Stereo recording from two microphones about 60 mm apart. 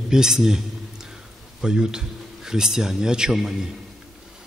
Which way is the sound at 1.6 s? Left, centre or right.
Centre.